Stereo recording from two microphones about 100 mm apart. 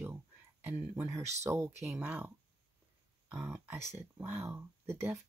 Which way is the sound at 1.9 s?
20° right (ahead or behind).